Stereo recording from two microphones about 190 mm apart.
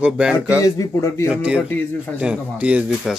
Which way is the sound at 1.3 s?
5° right (ahead or behind).